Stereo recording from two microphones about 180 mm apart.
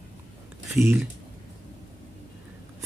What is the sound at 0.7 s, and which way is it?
Speech, 15° right (ahead or behind).